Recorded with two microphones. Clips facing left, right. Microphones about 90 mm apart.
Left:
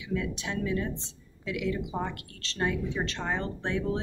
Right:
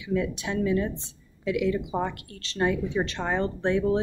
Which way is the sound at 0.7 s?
15° right (ahead or behind).